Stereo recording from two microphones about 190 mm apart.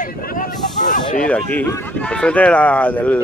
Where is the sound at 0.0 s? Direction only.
50° left (ahead or behind).